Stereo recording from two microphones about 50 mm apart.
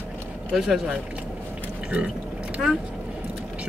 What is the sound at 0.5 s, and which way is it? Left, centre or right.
Speech, centre.